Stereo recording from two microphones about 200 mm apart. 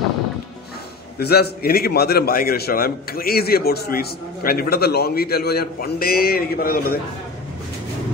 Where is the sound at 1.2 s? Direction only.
50° left (ahead or behind).